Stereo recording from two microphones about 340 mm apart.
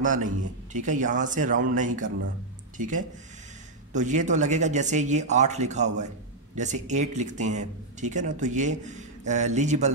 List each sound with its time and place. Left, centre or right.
0.0 s speech: right